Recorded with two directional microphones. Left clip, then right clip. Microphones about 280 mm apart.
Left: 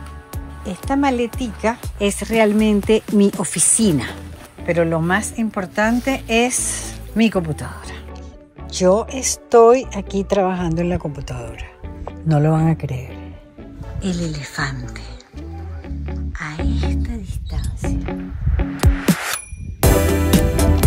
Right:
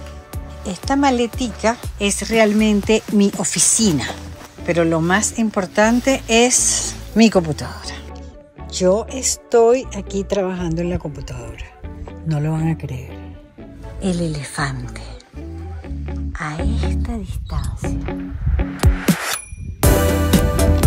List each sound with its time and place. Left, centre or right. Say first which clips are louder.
0.7 s speech: right 2 dB; centre
14.6 s speech: even; centre
16.1 s music: right 3 dB; centre